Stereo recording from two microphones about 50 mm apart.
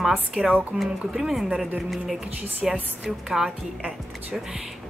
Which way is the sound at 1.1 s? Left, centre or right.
Centre.